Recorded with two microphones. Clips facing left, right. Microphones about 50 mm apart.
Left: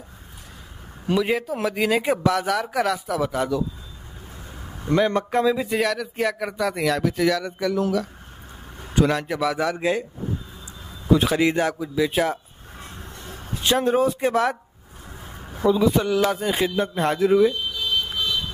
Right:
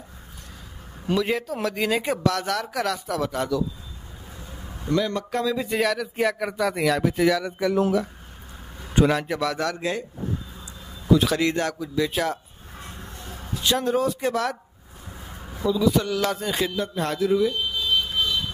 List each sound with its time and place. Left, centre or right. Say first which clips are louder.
1.0 s speech: left 2 dB; centre
4.8 s speech: left 4 dB; left
5.6 s speech: left 1 dB; centre
7.7 s speech: right 2 dB; right
9.0 s speech: even; centre
11.1 s speech: left 1 dB; left
13.5 s speech: left 3 dB; left
15.6 s speech: left 3 dB; left
15.9 s speech: left 3 dB; centre
16.7 s speech: left 4 dB; left